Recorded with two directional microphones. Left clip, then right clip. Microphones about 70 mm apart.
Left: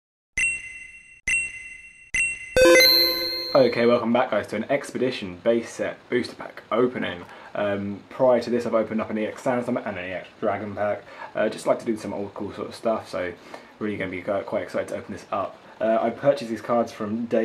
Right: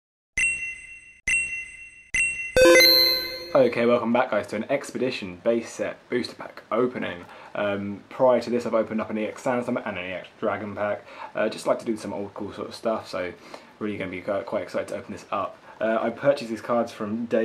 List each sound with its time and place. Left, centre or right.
0.3 s a sound: centre
1.3 s ding: centre
2.1 s music: centre
3.5 s speech: right
7.6 s speech: right
9.9 s speech: right
10.7 s speech: right
16.2 s speech: right